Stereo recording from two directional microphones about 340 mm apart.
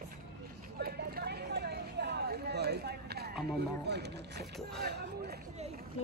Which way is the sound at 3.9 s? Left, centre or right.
Right.